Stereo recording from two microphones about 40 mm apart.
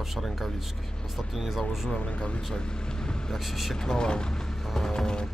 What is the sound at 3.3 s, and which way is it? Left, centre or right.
Speech, centre.